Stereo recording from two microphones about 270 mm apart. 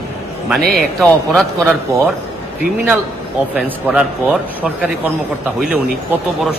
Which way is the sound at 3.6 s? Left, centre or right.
Centre.